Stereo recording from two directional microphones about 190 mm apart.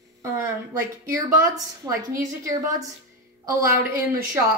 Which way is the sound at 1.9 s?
15° right (ahead or behind).